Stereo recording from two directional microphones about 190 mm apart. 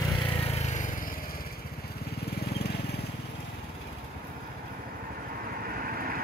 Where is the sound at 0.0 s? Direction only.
30° left (ahead or behind); by 3.0 s 55° left (ahead or behind).